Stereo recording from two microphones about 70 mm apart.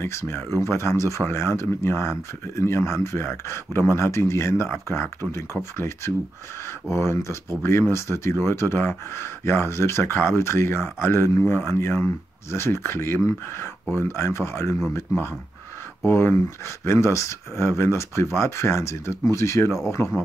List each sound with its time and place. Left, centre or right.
0.6 s speech: left
16.0 s speech: left